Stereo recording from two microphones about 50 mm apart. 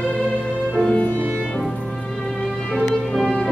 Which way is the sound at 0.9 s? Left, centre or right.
Left.